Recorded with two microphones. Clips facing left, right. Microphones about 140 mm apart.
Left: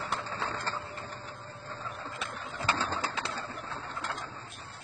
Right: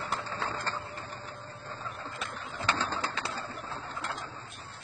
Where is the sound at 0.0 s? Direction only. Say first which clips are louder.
Even; centre (ahead or behind).